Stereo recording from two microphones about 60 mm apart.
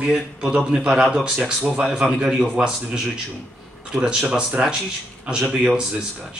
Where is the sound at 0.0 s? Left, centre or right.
Centre.